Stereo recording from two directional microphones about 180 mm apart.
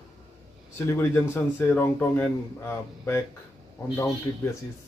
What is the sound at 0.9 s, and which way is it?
A man's voice, 15° left (ahead or behind).